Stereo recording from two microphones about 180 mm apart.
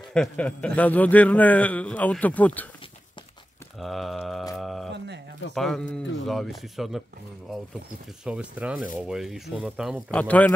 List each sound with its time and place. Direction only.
0.1 s a man's voice: 5° left (ahead or behind)
3.8 s speech: centre (ahead or behind)
4.6 s a sound: centre (ahead or behind)
4.9 s a sound: 70° right (ahead or behind)
5.5 s speech: centre (ahead or behind)
8.3 s speech: 5° right (ahead or behind)